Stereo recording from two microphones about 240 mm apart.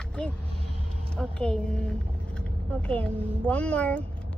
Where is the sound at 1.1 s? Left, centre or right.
Centre.